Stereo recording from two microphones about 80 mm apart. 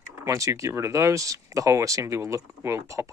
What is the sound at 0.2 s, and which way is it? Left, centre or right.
Speech, right.